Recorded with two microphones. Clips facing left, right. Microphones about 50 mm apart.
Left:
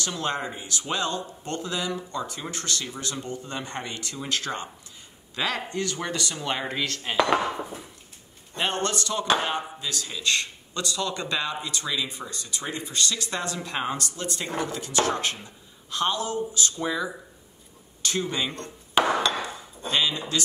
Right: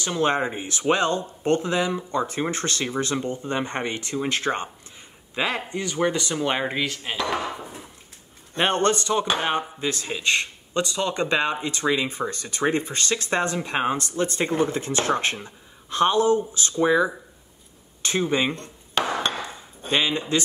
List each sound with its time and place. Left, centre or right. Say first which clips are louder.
0.0 s speech: right 6 dB; right; by 7.2 s centre
8.5 s speech: right 6 dB; right
19.0 s hammer: left 3 dB; centre
19.9 s speech: right 3 dB; right